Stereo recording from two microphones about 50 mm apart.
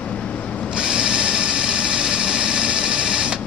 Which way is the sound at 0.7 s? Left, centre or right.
Centre.